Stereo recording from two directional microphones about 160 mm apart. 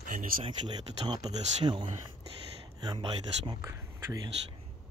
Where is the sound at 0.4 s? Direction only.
25° right (ahead or behind).